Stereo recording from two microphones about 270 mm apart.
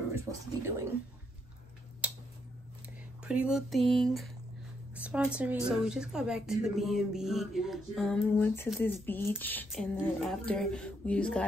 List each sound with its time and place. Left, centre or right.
0.1 s speech: centre
2.0 s a sound: centre
3.3 s speech: centre